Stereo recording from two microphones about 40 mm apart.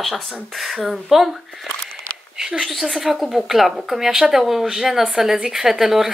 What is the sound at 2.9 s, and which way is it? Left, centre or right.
Speech, centre.